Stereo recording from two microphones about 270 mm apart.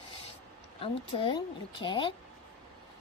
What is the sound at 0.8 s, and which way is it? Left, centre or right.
Speech, centre.